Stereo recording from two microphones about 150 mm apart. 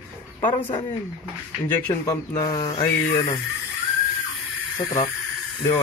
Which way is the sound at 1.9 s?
25° left (ahead or behind).